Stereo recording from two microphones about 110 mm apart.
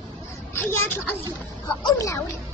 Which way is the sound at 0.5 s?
25° left (ahead or behind).